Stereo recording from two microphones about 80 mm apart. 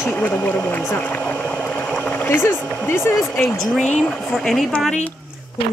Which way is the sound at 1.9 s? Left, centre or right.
Centre.